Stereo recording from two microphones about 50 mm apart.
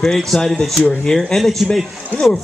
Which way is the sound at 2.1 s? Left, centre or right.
Left.